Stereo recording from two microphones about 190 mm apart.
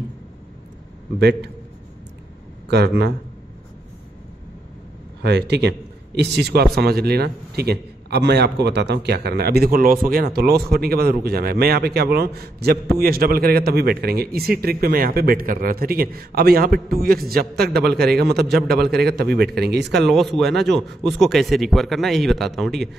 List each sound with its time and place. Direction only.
2.7 s a man's voice: 60° right (ahead or behind)
5.2 s a man's voice: 60° right (ahead or behind)
20.1 s speech: centre (ahead or behind)